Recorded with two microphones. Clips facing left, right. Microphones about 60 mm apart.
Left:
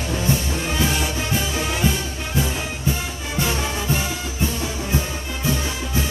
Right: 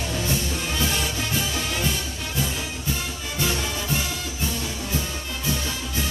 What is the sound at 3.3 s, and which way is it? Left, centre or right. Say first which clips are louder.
Music: left 3 dB; left.